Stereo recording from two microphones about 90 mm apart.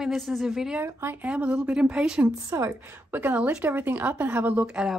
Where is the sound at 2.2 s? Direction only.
35° right (ahead or behind).